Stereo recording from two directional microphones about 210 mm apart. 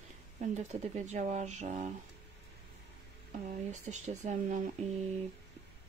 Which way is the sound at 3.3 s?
35° right (ahead or behind).